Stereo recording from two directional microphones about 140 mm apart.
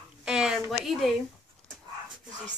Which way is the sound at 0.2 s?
5° right (ahead or behind).